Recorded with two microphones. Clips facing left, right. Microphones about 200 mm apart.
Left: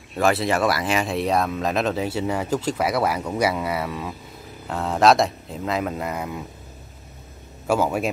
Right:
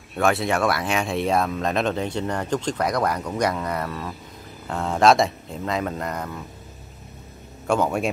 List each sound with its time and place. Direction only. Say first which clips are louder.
0.1 s speech: left 1 dB; centre (ahead or behind)
7.6 s speech: even; 5° left (ahead or behind)